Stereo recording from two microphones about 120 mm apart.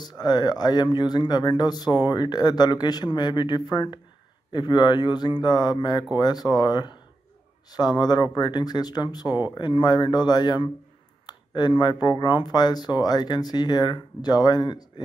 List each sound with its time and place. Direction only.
0.1 s speech: 35° left (ahead or behind)